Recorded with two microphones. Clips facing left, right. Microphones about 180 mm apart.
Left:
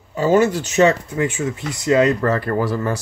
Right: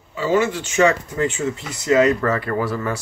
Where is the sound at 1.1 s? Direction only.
15° left (ahead or behind).